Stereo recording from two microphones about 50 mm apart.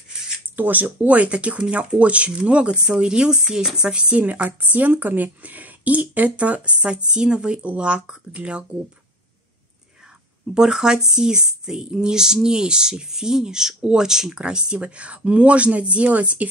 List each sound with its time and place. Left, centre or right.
0.6 s speech: right
4.3 s speech: right
10.5 s speech: centre